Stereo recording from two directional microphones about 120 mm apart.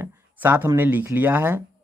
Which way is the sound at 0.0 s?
15° right (ahead or behind).